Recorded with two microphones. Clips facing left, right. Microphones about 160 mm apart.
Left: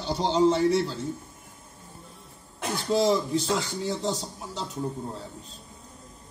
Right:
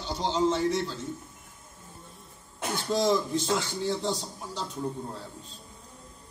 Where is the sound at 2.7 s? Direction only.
Centre (ahead or behind).